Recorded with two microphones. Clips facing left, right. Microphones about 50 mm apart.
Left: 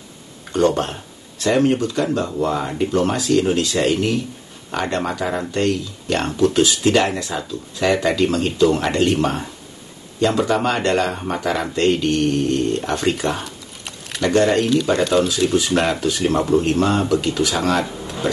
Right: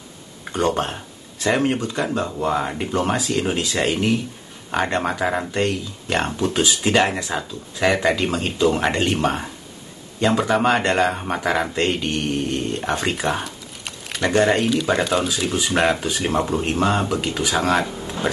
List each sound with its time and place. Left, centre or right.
0.5 s speech: centre
13.1 s a sound: centre
14.2 s speech: centre